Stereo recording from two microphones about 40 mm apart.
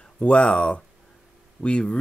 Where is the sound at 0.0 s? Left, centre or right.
Left.